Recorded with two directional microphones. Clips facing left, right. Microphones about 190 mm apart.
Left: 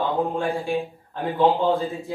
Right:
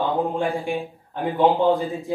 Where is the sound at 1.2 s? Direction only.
15° right (ahead or behind).